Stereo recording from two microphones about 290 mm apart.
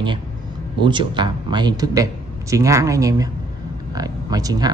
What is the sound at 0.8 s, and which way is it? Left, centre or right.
Speech, centre.